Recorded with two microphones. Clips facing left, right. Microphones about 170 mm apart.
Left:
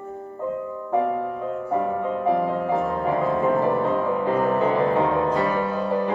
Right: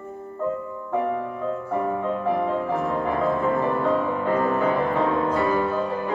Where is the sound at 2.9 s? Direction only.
20° left (ahead or behind).